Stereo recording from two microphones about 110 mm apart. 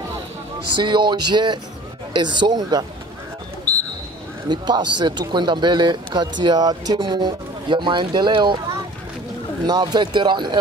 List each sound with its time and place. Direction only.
0.7 s speech: 45° right (ahead or behind)
4.5 s speech: 40° right (ahead or behind)
9.7 s speech: 40° right (ahead or behind)